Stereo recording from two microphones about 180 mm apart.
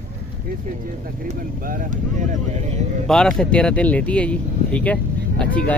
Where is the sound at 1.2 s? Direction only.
45° right (ahead or behind).